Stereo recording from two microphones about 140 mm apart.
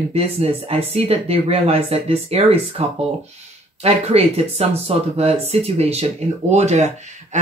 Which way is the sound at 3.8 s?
45° right (ahead or behind).